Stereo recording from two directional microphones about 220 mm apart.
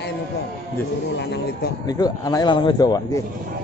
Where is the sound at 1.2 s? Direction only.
50° left (ahead or behind).